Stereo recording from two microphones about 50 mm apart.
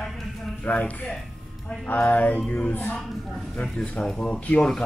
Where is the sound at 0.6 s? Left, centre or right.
Left.